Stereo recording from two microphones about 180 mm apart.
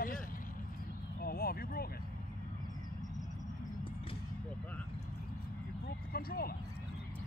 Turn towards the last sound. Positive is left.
turn(degrees=55)  # may be behind; listen again after turning